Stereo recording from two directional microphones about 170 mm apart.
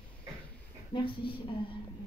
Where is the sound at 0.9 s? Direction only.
30° left (ahead or behind).